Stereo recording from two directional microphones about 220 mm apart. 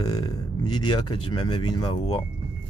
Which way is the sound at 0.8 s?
20° left (ahead or behind).